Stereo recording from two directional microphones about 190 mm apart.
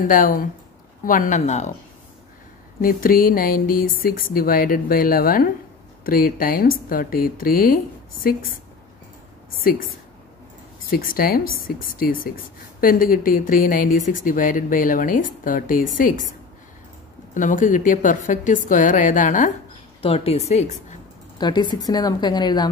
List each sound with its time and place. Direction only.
0.0 s a woman's voice: 45° left (ahead or behind)
2.8 s speech: 50° left (ahead or behind)
10.9 s speech: 50° left (ahead or behind)
17.3 s speech: 45° left (ahead or behind)
20.0 s a woman's voice: 30° left (ahead or behind)
21.4 s a woman's voice: 25° left (ahead or behind)